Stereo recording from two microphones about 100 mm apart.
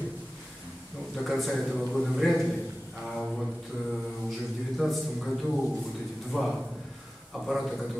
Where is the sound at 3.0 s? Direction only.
Centre (ahead or behind).